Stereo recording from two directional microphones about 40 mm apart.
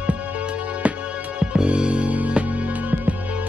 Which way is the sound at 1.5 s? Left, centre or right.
Right.